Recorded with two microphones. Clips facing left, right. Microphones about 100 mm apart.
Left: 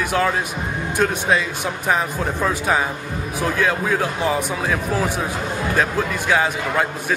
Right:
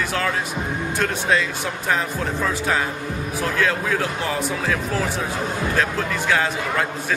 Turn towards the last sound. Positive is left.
turn(degrees=15)  # may be behind; listen again after turning